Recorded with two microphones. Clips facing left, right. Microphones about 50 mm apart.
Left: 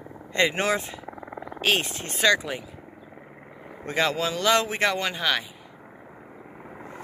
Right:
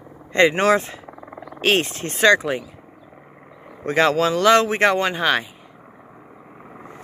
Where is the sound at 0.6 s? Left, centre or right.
Right.